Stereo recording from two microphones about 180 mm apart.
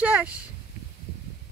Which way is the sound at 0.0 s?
5° right (ahead or behind).